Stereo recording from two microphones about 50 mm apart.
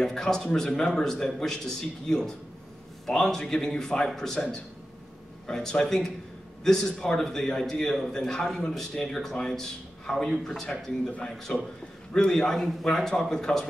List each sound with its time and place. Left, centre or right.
0.0 s a man's voice: centre